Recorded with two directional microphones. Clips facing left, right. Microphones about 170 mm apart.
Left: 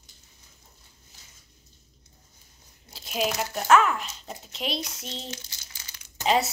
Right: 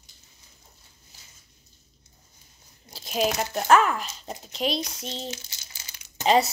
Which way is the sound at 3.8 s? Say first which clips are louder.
Right 1 dB; centre (ahead or behind).